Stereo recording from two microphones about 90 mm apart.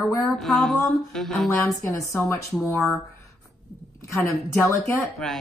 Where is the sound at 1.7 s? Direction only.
35° left (ahead or behind).